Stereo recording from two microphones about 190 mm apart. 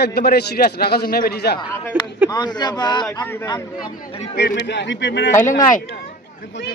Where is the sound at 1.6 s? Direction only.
25° left (ahead or behind).